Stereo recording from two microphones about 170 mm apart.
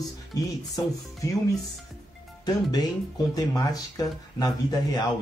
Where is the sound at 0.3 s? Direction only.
20° left (ahead or behind).